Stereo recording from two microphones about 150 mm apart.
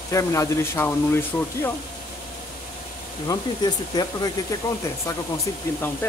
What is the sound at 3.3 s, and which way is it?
Speech, 25° left (ahead or behind).